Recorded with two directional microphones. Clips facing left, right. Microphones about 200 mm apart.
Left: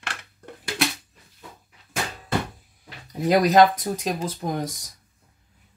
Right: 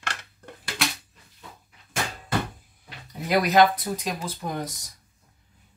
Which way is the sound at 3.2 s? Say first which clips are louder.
Left 3 dB; 40° left (ahead or behind).